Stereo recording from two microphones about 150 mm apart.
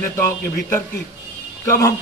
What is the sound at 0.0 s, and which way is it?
A man's voice, 15° left (ahead or behind).